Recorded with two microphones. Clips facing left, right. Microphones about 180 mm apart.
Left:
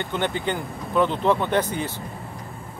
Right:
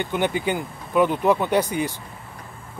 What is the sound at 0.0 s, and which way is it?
Speech, 10° right (ahead or behind).